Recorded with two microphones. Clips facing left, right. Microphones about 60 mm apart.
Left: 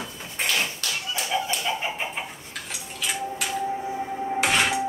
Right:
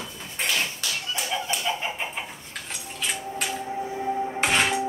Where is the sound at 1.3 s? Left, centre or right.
Centre.